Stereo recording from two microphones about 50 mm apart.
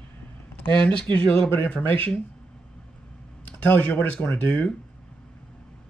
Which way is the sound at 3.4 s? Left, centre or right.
Left.